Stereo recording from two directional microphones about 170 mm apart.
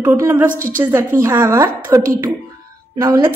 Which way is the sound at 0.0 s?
20° right (ahead or behind).